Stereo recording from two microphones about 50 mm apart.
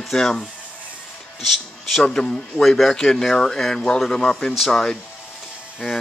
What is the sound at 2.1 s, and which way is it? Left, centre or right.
Speech, centre.